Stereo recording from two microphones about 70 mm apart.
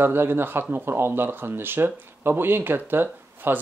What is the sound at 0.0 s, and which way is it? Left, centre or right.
Speech, right.